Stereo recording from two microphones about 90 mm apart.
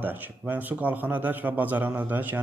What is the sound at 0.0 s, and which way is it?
A man's voice, 20° right (ahead or behind).